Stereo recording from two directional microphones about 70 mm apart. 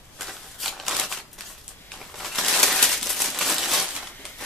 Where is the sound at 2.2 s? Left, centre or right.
Centre.